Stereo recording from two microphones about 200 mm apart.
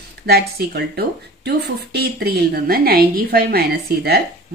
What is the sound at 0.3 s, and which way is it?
Speech, 50° right (ahead or behind).